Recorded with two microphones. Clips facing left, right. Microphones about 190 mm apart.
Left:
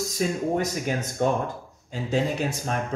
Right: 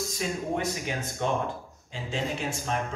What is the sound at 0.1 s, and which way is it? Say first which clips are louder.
Speech: left 8 dB; 40° left (ahead or behind).